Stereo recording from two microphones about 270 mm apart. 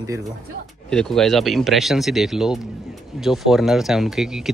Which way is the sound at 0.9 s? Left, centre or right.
Centre.